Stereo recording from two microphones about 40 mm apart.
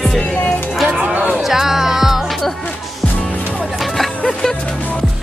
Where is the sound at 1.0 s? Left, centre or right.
Right.